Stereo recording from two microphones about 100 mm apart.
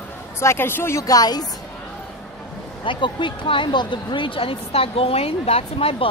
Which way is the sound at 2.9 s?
55° left (ahead or behind).